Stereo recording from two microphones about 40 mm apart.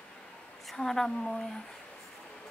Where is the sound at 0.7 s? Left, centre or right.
Centre.